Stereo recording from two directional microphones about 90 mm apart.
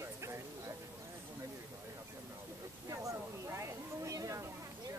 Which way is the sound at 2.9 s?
35° right (ahead or behind).